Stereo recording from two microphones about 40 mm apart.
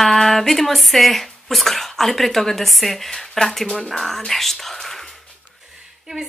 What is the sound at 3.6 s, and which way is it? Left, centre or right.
Speech, left.